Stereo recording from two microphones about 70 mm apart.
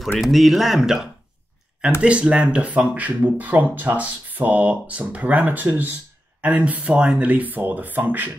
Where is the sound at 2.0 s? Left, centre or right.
Centre.